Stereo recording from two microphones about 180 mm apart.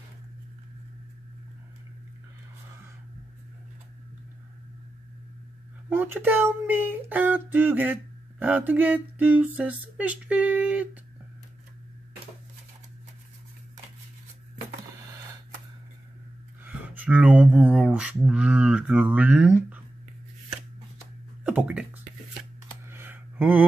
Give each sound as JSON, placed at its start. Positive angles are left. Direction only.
{"t": 5.9, "sound": "speech", "side_deg": -10}
{"t": 16.6, "sound": "speech", "side_deg": -10}
{"t": 21.5, "sound": "speech", "side_deg": -5}
{"t": 22.8, "sound": "computer keyboard", "side_deg": -10}